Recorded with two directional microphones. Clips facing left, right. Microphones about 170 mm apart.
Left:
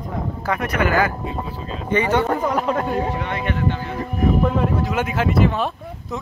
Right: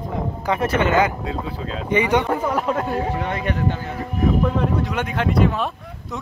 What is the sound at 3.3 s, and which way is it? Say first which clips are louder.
Speech: even; 40° right (ahead or behind).